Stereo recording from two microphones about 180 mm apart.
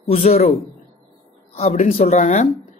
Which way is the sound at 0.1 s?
35° left (ahead or behind).